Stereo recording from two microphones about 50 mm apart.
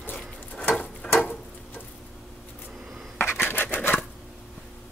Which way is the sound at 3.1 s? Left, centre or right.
Left.